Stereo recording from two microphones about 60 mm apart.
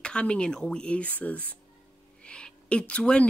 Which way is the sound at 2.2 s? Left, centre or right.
Centre.